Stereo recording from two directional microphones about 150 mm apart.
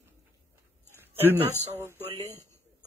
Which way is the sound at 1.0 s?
15° right (ahead or behind).